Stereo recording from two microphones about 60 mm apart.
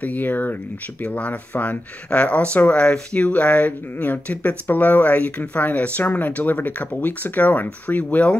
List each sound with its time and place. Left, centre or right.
0.0 s speech: left